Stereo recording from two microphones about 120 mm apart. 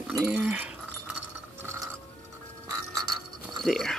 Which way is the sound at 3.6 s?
Centre (ahead or behind).